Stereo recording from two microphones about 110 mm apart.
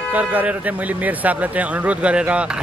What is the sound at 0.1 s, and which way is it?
Speech, 15° right (ahead or behind).